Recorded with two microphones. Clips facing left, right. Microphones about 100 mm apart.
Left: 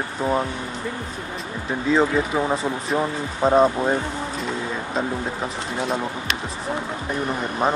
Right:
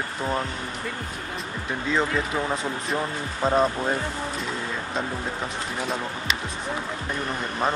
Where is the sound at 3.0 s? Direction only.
30° left (ahead or behind).